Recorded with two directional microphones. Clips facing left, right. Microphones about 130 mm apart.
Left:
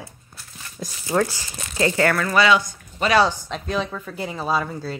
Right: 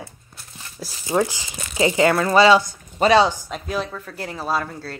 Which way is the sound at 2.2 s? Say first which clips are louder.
Right 4 dB; 30° right (ahead or behind).